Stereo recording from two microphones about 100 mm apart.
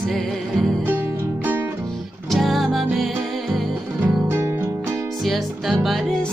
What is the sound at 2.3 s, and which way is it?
Music, centre (ahead or behind).